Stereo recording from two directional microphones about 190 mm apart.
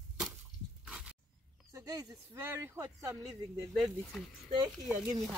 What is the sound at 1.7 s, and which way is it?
Speech, 20° right (ahead or behind).